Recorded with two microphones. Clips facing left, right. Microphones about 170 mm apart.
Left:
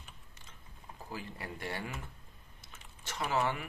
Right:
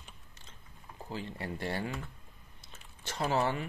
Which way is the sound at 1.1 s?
30° right (ahead or behind).